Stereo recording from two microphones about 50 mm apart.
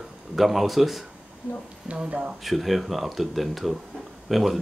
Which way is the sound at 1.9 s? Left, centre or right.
Right.